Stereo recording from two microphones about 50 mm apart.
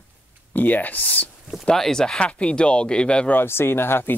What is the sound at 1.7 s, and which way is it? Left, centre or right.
Speech, centre.